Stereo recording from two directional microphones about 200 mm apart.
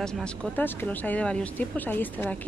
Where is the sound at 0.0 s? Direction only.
5° left (ahead or behind).